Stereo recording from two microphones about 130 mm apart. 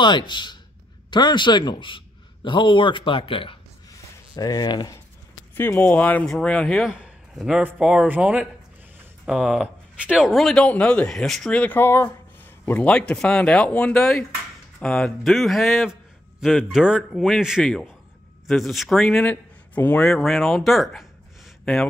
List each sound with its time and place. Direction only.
0.0 s a man's voice: 35° left (ahead or behind)
4.4 s a man's voice: 30° left (ahead or behind); by 6.9 s 5° left (ahead or behind)
6.9 s a sound: 5° right (ahead or behind)
7.6 s a man's voice: 10° right (ahead or behind)